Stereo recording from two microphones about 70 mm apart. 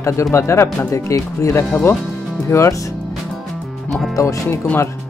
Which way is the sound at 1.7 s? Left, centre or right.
Left.